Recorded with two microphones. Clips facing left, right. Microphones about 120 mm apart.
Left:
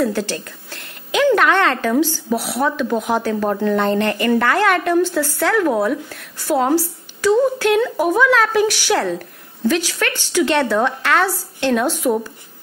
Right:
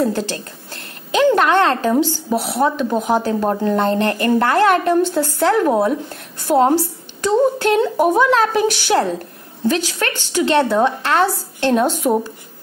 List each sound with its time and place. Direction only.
0.0 s a woman's voice: 20° right (ahead or behind)
4.0 s a woman's voice: 30° right (ahead or behind)